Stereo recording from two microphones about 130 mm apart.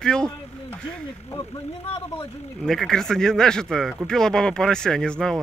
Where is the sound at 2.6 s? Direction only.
Centre (ahead or behind).